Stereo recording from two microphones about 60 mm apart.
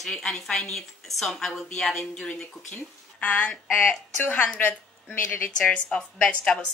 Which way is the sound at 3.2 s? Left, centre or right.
Left.